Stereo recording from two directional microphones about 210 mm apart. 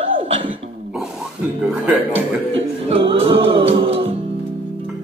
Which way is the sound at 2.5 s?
25° right (ahead or behind).